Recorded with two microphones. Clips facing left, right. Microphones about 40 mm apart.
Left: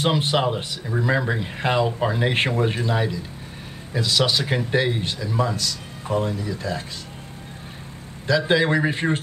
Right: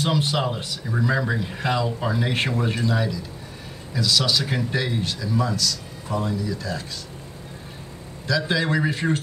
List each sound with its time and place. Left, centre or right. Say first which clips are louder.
0.0 s a man's voice: left 2 dB; left
8.3 s a man's voice: left 4 dB; left